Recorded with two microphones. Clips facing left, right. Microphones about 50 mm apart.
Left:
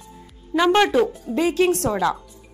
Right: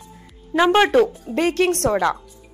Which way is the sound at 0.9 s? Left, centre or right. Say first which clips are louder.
Right 2 dB; right.